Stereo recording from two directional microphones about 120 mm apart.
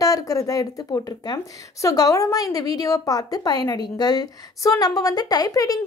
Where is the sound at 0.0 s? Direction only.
30° left (ahead or behind).